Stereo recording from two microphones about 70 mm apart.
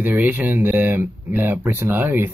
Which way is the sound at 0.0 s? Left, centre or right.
Right.